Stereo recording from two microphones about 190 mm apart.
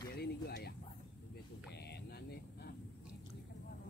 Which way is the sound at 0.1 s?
55° left (ahead or behind).